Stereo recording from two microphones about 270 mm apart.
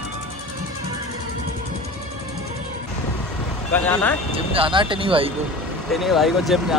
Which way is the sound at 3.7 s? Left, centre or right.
Centre.